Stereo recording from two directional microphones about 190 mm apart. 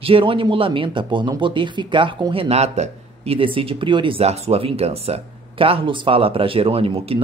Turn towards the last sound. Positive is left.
turn(degrees=-30)  # may be behind; listen again after turning